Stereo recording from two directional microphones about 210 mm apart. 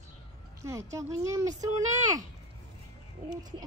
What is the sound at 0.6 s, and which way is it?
A child's voice, 15° right (ahead or behind).